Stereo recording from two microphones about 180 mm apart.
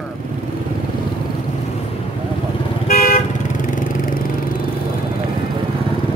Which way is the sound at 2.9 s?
50° left (ahead or behind).